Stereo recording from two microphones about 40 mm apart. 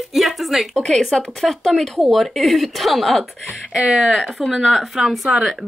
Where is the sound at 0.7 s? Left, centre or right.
Centre.